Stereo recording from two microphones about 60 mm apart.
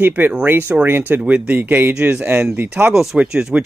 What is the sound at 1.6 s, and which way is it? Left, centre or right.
Speech, right.